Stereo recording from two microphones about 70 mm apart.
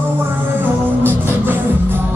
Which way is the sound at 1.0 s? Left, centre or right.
Right.